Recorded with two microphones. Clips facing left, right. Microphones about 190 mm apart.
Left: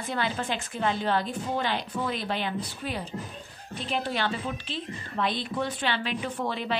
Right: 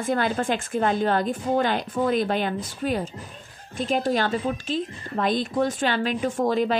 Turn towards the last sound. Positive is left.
turn(degrees=-45)  # may be behind; listen again after turning